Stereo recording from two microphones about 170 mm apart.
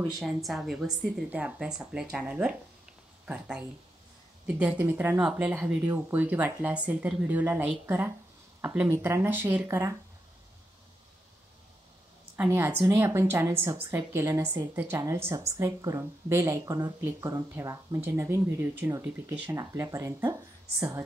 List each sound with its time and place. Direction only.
0.2 s a woman's voice: centre (ahead or behind)
12.4 s a woman's voice: 15° right (ahead or behind)